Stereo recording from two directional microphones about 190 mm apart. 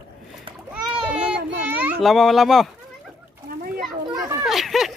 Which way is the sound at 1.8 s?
5° right (ahead or behind).